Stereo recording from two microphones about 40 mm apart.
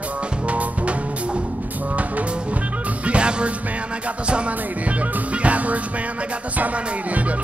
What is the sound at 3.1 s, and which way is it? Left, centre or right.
Music, right.